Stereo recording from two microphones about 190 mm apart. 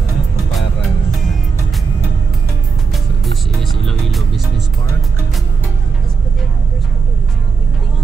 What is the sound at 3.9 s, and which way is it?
Speech, centre (ahead or behind).